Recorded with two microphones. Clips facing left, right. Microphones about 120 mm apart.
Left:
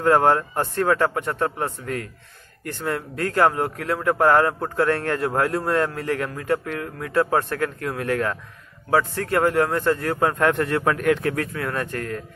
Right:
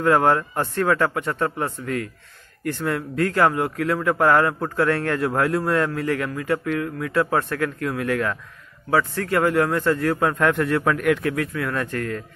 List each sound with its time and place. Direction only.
0.0 s a man's voice: 30° left (ahead or behind)
11.2 s speech: 40° left (ahead or behind)
11.7 s a man's voice: 25° left (ahead or behind)